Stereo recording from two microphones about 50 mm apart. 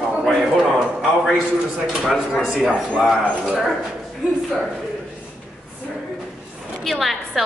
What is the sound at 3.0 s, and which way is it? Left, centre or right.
Speech, centre.